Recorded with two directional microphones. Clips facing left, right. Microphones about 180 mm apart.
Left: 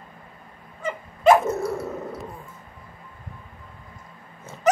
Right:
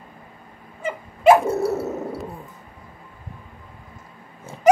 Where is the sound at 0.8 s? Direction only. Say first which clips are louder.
Right 2 dB; 10° right (ahead or behind).